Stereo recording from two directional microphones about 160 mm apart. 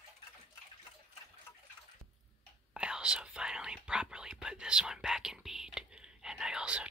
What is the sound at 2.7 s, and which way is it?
Whispering, 5° right (ahead or behind).